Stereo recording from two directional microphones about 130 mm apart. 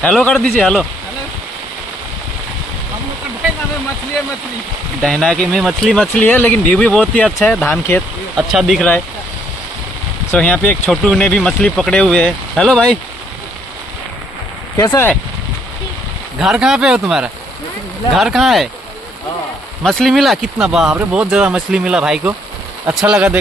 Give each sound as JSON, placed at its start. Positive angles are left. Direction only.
{"t": 0.0, "sound": "speech", "side_deg": 5}
{"t": 5.0, "sound": "speech", "side_deg": 5}
{"t": 6.2, "sound": "speech", "side_deg": 15}
{"t": 10.3, "sound": "speech", "side_deg": 10}
{"t": 14.8, "sound": "speech", "side_deg": 25}
{"t": 16.3, "sound": "speech", "side_deg": -5}
{"t": 18.1, "sound": "speech", "side_deg": 0}
{"t": 19.8, "sound": "speech", "side_deg": 0}